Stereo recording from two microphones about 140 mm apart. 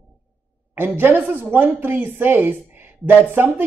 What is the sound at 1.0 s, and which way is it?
Speech, 15° right (ahead or behind).